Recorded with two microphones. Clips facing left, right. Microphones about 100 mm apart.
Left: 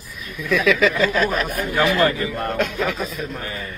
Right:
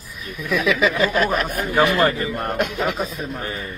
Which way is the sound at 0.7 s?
5° right (ahead or behind).